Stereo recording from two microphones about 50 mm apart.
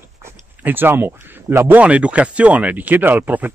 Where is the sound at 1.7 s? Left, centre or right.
Right.